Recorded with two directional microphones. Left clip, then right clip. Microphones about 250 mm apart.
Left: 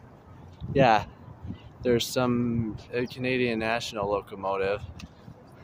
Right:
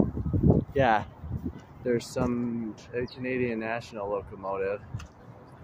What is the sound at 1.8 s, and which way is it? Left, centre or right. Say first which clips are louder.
Speech: left 4 dB; centre.